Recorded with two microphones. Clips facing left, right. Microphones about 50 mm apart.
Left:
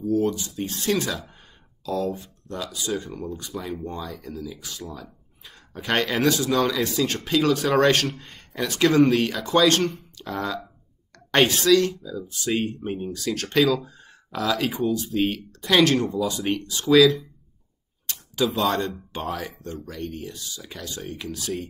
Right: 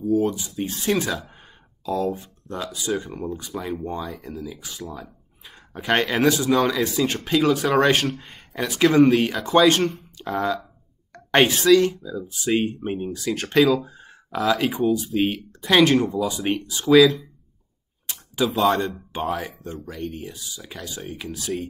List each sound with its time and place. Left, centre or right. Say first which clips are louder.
0.0 s speech: right 2 dB; centre
0.3 s speech: right 1 dB; centre
1.9 s speech: right 2 dB; centre
2.5 s a woman's voice: right 2 dB; centre
13.6 s speech: right 3 dB; centre
16.1 s speech: right 1 dB; centre
16.3 s speech: right 1 dB; centre
16.8 s speech: right 2 dB; centre
18.0 s a sound: right 1 dB; centre
18.5 s speech: right 3 dB; centre